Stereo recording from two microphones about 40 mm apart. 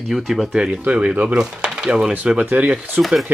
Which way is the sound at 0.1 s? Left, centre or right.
Centre.